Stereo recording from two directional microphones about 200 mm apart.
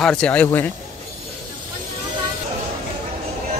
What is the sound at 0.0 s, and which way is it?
Speech, 5° left (ahead or behind).